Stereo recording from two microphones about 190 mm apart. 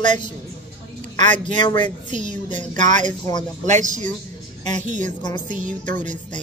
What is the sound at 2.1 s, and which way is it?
Speech, 40° right (ahead or behind).